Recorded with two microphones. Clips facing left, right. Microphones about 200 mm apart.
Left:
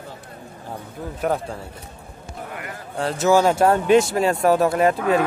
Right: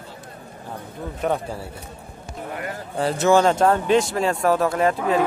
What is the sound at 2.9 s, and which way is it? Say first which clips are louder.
Speech: even; centre (ahead or behind).